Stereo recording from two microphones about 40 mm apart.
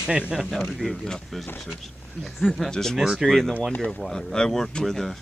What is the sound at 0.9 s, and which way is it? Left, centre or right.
Speech, centre.